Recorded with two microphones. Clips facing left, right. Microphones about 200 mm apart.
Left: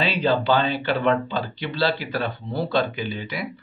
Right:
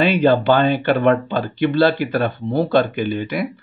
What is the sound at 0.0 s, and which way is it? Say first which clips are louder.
Speech: right 7 dB; 55° right (ahead or behind).